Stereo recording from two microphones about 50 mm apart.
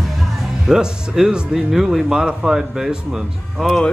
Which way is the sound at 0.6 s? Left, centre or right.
Centre.